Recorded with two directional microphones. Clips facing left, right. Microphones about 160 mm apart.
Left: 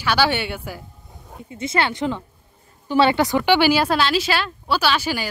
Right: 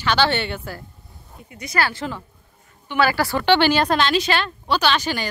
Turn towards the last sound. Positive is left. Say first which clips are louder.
# even
turn(degrees=5)  # may be behind; listen again after turning